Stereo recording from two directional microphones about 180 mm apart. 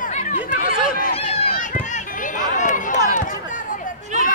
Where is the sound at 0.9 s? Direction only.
50° left (ahead or behind).